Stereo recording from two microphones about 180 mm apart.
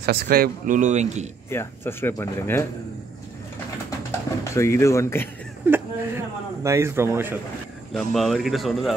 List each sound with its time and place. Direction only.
0.0 s speech: 60° right (ahead or behind); by 1.3 s 40° right (ahead or behind)
1.5 s speech: 15° left (ahead or behind)
4.6 s speech: 15° left (ahead or behind)
5.7 s a man's voice: 15° right (ahead or behind)
7.9 s speech: centre (ahead or behind)